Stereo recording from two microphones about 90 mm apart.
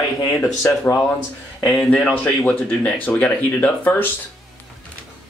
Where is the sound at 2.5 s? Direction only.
10° left (ahead or behind).